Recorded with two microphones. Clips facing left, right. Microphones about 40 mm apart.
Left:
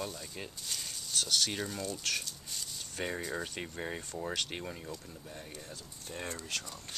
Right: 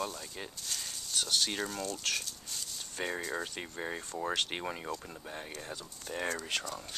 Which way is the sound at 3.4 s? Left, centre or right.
Centre.